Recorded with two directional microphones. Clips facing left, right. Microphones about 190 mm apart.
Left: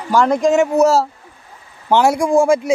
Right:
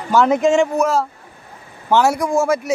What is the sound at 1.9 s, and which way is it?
Speech, 15° left (ahead or behind).